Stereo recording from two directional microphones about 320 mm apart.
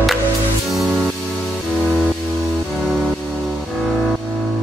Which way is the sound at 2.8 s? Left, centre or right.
Centre.